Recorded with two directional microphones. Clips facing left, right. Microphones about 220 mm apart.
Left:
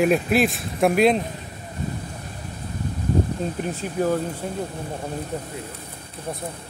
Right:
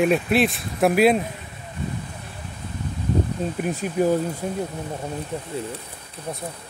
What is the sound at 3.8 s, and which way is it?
Speech, 15° right (ahead or behind).